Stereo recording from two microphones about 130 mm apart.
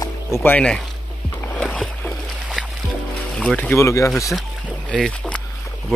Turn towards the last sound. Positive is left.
turn(degrees=10)  # may be behind; listen again after turning